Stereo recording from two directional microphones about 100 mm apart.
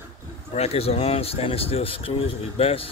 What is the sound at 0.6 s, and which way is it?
Speech, 90° left.